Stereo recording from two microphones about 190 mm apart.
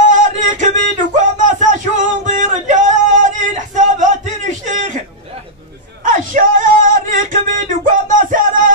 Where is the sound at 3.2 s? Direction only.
40° right (ahead or behind).